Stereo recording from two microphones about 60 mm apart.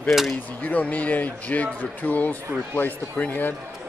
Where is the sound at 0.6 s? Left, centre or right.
Left.